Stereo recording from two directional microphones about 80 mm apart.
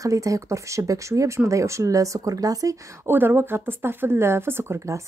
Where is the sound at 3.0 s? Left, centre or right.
Right.